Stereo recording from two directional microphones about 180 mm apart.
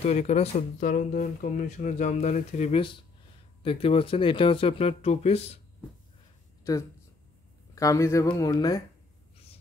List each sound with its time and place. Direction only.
0.0 s speech: 40° left (ahead or behind)
0.8 s speech: 50° left (ahead or behind); by 5.6 s 35° left (ahead or behind)
6.7 s speech: 15° left (ahead or behind)